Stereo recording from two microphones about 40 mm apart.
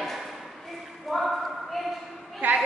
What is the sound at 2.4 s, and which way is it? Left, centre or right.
Speech, right.